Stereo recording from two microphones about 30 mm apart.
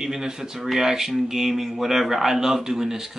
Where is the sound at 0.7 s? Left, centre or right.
Centre.